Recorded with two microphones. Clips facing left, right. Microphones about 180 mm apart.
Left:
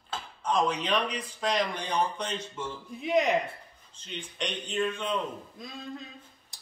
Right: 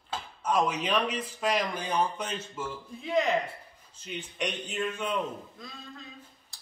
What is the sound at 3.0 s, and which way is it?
Speech, 20° left (ahead or behind).